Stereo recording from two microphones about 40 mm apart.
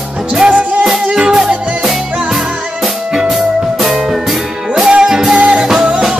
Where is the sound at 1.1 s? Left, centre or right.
Right.